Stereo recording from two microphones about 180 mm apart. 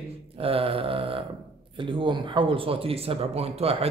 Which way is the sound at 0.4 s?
30° right (ahead or behind).